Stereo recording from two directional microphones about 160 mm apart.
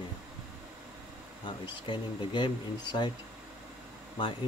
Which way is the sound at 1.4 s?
30° left (ahead or behind).